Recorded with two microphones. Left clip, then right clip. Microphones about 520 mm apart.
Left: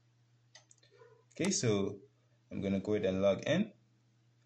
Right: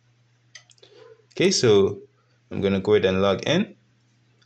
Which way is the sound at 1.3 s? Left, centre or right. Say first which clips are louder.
Right 16 dB; left.